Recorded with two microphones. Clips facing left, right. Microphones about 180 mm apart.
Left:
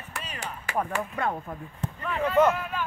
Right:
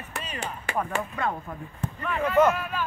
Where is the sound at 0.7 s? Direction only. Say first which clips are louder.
Even; 30° right (ahead or behind).